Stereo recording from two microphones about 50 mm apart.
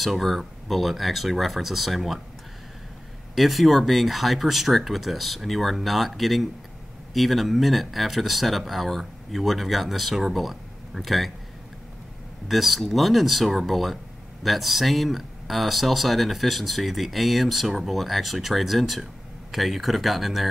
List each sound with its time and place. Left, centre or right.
0.0 s speech: centre
3.3 s speech: centre
12.4 s speech: centre